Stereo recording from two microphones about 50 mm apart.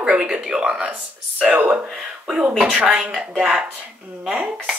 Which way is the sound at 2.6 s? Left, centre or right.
Centre.